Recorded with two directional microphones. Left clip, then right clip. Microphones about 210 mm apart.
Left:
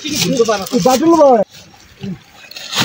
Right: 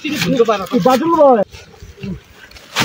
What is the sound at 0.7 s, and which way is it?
Speech, 45° left (ahead or behind).